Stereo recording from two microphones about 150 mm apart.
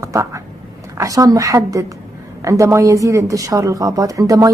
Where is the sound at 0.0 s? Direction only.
20° right (ahead or behind).